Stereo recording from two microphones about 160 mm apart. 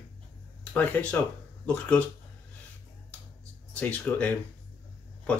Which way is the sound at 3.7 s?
10° left (ahead or behind).